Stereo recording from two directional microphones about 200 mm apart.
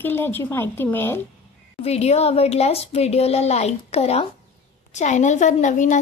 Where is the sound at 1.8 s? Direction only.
30° left (ahead or behind).